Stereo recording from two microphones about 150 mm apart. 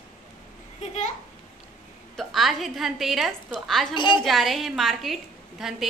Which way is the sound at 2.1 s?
Centre (ahead or behind).